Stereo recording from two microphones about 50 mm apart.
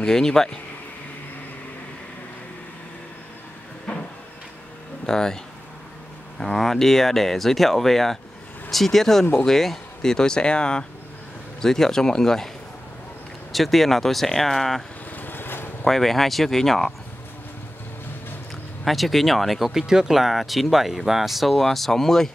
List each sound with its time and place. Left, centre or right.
0.0 s speech: centre
5.0 s speech: centre
6.4 s speech: centre
13.5 s speech: centre
15.1 s vehicle: left
15.8 s speech: centre
18.9 s speech: centre